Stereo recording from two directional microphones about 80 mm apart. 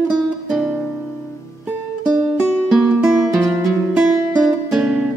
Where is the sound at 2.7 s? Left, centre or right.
Centre.